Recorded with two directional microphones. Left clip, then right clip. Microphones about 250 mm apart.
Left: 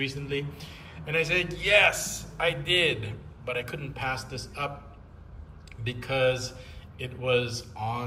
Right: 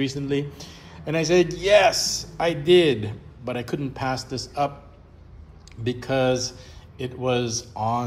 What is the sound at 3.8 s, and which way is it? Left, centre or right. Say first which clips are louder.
Speech: right 5 dB; centre.